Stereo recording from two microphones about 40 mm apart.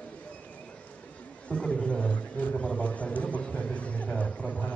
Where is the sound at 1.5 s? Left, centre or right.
Left.